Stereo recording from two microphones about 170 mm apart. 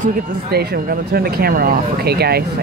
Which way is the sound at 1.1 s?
65° right (ahead or behind).